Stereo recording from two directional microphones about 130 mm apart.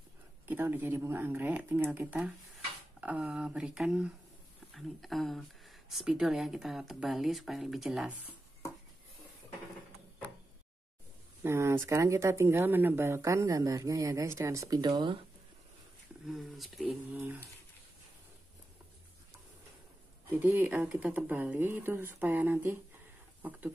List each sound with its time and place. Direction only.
0.5 s speech: 15° right (ahead or behind)
11.4 s speech: 20° right (ahead or behind); by 15.1 s 35° right (ahead or behind)
16.3 s speech: centre (ahead or behind)
17.1 s speech: 15° right (ahead or behind)
20.2 s speech: 15° right (ahead or behind)